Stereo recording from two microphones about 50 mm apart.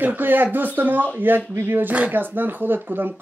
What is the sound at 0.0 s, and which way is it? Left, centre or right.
Speech, right.